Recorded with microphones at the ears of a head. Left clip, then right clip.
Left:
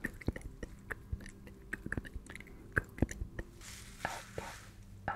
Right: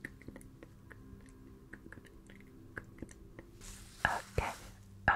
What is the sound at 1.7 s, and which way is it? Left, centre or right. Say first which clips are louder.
Chewing: left 13 dB; left.